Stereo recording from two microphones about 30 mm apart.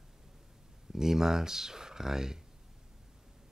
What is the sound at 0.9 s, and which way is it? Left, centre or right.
Speech, centre.